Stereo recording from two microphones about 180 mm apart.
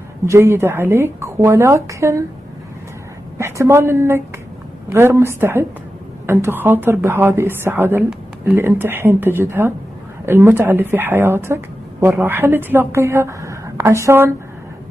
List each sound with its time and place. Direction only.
0.2 s a woman's voice: 15° right (ahead or behind)
3.3 s a woman's voice: 15° right (ahead or behind)